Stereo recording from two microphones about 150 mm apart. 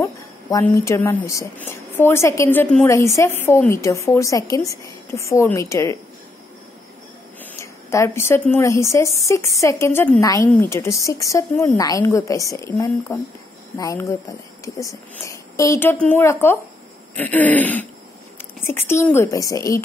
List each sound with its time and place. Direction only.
0.0 s a woman's voice: 20° left (ahead or behind)
7.6 s a woman's voice: 20° left (ahead or behind)